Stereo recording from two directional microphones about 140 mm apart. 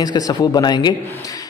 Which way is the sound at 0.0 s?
30° left (ahead or behind).